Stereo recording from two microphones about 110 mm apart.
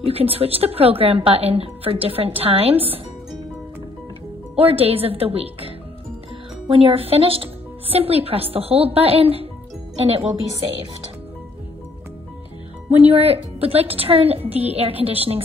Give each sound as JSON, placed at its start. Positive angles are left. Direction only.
{"t": 0.0, "sound": "speech", "side_deg": -60}
{"t": 4.6, "sound": "speech", "side_deg": -60}
{"t": 6.7, "sound": "speech", "side_deg": -60}
{"t": 13.0, "sound": "speech", "side_deg": -65}